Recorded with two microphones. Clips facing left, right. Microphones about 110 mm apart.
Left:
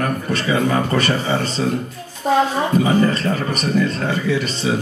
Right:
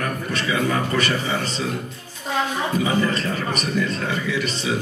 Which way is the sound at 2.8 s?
40° left (ahead or behind).